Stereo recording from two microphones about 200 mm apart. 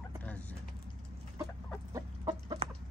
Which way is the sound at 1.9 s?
20° right (ahead or behind).